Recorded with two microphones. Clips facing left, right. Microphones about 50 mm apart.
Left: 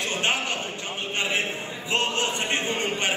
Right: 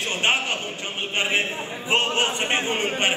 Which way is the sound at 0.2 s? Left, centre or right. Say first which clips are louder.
Right 5 dB; right.